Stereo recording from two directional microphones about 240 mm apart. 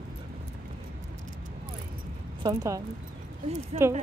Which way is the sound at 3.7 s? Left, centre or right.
Right.